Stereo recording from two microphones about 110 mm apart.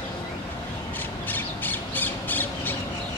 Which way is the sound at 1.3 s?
15° left (ahead or behind).